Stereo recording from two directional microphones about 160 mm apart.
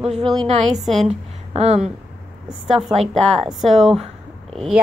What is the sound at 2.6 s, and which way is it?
Speech, centre (ahead or behind).